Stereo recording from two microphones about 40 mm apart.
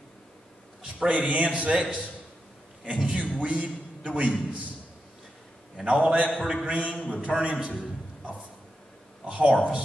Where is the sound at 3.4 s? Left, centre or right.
Right.